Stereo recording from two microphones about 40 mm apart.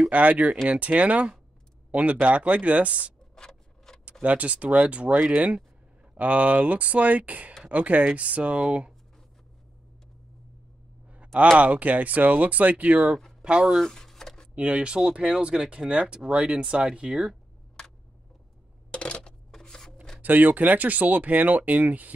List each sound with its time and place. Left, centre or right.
0.1 s speech: right
3.3 s a sound: centre
4.2 s speech: right
11.5 s speech: right
13.8 s a sound: centre
14.7 s speech: right
18.9 s coin: left
19.5 s rub: centre
20.2 s speech: right